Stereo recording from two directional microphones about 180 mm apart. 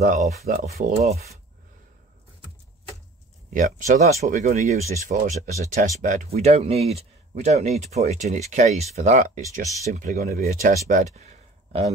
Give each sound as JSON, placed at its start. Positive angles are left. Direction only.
{"t": 0.0, "sound": "speech", "side_deg": -45}
{"t": 3.4, "sound": "speech", "side_deg": -50}